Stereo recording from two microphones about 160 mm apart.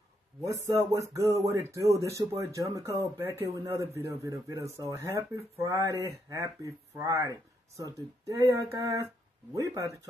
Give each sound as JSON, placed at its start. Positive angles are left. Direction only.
{"t": 0.7, "sound": "speech", "side_deg": -20}